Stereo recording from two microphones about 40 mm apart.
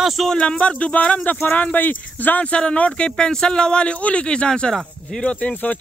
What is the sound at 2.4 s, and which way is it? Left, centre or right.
Speech, left.